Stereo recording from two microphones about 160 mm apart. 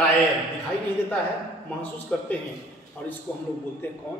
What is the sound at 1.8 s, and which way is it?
A man's voice, 10° left (ahead or behind).